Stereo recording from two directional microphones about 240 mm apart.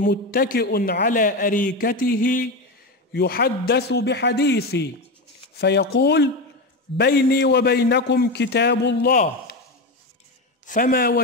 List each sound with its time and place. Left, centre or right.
0.0 s a man's voice: left
10.7 s a man's voice: left